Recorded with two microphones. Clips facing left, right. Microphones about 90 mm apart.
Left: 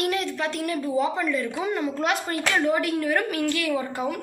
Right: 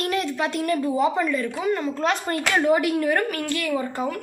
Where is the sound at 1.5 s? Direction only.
15° left (ahead or behind).